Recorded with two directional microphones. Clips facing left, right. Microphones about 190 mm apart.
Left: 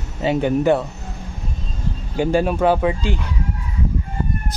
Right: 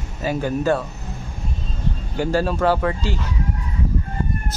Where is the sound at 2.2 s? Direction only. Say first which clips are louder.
Left 3 dB; 15° left (ahead or behind).